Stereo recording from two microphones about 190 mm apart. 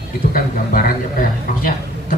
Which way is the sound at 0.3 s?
45° left (ahead or behind).